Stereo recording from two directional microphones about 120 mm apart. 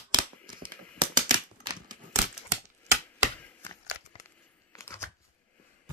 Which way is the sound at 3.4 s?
15° left (ahead or behind).